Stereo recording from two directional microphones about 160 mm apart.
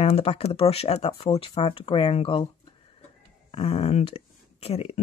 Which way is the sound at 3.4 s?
35° left (ahead or behind).